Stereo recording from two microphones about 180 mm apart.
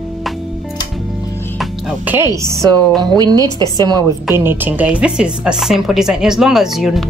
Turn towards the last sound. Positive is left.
turn(degrees=0)  # may be behind; listen again after turning